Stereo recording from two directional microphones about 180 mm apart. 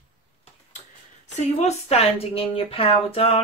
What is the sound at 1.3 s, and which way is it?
Speech, 40° left (ahead or behind).